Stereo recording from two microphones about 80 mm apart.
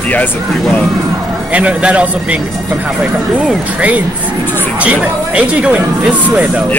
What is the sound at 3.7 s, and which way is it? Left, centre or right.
Speech, centre.